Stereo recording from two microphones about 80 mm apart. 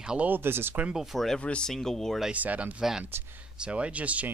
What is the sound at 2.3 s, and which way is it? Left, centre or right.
Speech, centre.